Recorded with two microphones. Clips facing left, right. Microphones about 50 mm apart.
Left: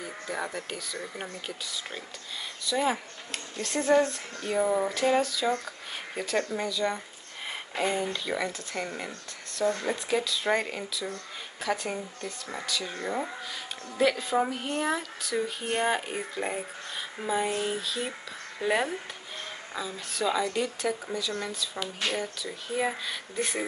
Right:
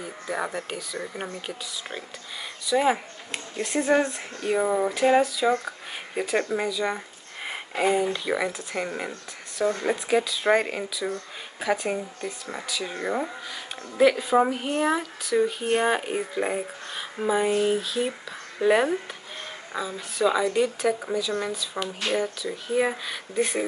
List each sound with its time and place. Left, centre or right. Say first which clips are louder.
0.0 s speech: right 4 dB; centre
2.6 s speech: right 5 dB; centre
7.4 s a sound: right 5 dB; centre
8.1 s speech: right 4 dB; centre
13.9 s speech: right 6 dB; centre